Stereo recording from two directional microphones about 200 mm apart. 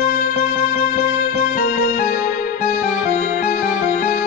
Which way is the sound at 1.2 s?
45° left (ahead or behind).